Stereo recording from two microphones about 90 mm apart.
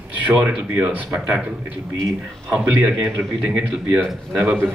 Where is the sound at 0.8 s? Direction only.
5° right (ahead or behind).